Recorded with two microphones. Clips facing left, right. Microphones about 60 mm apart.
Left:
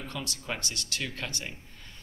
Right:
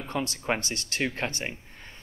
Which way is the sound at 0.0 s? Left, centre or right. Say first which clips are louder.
Right 7 dB; right.